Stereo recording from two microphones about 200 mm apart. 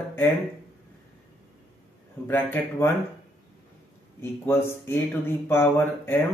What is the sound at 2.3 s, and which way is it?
Speech, 10° left (ahead or behind).